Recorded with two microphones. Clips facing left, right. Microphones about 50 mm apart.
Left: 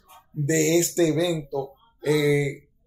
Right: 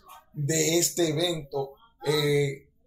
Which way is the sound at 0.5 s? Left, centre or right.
Left.